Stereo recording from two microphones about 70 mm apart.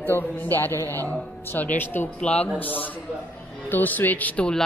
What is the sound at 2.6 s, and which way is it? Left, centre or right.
Speech, left.